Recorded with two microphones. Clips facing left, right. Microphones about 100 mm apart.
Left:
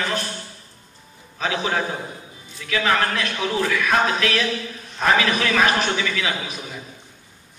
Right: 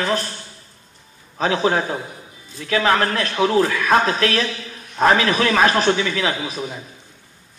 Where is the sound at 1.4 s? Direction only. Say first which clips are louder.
Right 5 dB; 35° right (ahead or behind).